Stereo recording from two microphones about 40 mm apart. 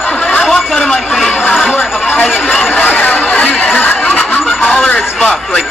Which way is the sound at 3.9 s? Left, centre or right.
Left.